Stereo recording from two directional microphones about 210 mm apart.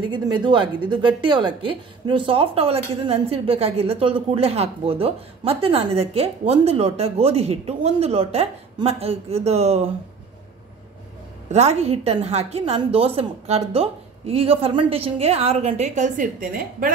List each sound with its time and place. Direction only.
0.1 s a woman's voice: 20° right (ahead or behind)
11.5 s a woman's voice: 30° right (ahead or behind)